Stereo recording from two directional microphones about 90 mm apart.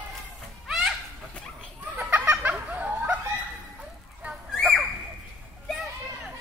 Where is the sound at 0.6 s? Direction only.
Centre (ahead or behind).